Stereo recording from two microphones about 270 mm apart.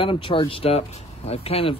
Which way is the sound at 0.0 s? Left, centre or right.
Centre.